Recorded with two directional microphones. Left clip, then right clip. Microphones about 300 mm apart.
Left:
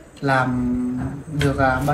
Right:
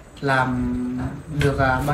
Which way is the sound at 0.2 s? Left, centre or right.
Centre.